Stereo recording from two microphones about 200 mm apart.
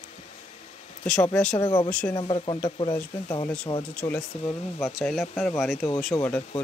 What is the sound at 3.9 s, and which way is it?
Speech, 5° left (ahead or behind).